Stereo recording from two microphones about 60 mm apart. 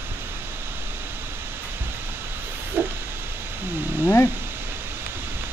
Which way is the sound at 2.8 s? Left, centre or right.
Right.